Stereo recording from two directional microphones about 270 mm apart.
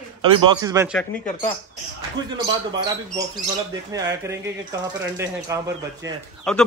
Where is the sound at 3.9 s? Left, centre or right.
Centre.